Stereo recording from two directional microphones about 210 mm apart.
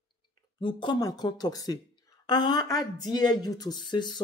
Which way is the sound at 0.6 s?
20° left (ahead or behind).